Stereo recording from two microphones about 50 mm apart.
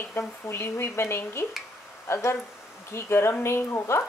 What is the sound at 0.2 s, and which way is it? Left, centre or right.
Speech, left.